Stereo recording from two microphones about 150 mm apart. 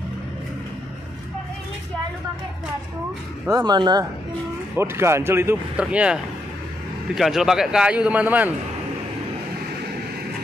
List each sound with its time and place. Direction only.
3.4 s speech: 25° right (ahead or behind)
4.7 s speech: 15° right (ahead or behind)